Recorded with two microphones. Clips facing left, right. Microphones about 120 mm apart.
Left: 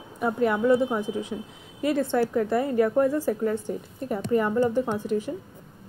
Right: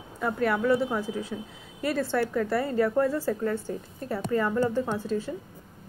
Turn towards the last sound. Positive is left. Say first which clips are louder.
# left 2 dB
turn(degrees=15)  # may be behind; listen again after turning